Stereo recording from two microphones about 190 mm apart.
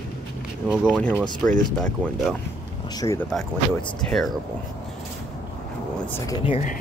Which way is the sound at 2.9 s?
15° left (ahead or behind).